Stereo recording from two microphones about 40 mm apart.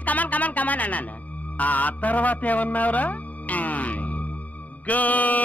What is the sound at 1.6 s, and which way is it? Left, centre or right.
Speech, left.